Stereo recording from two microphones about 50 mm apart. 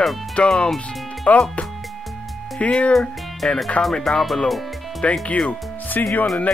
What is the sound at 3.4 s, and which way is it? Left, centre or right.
Speech, centre.